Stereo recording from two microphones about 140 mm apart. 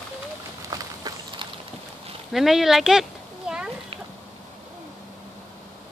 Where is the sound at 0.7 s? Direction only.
30° right (ahead or behind).